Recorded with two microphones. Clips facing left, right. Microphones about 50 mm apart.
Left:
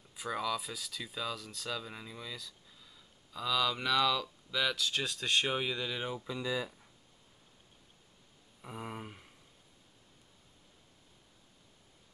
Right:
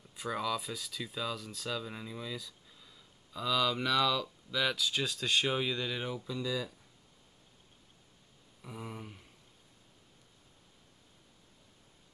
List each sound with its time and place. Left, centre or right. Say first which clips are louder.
0.1 s speech: right 1 dB; centre
6.2 s speech: even; left
8.6 s a sound: left 2 dB; left